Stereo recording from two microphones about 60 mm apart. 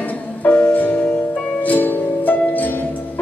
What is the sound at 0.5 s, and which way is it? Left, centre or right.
Music, centre.